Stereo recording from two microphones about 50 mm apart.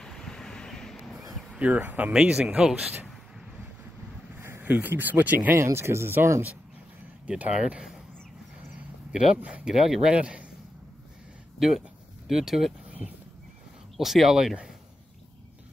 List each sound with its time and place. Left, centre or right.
0.0 s vehicle: centre
1.6 s speech: right
2.1 s speech: centre
4.4 s a sound: right
4.6 s speech: right
5.6 s speech: right
7.2 s speech: right
9.1 s speech: centre
12.3 s speech: centre
13.0 s horse: right
13.9 s speech: centre